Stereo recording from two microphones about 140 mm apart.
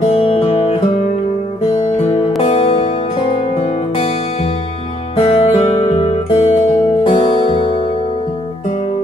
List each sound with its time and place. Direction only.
0.0 s music: 45° left (ahead or behind)
2.4 s music: 45° left (ahead or behind)
5.1 s music: 45° left (ahead or behind)